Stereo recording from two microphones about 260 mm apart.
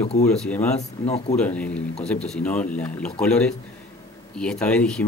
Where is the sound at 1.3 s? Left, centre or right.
Centre.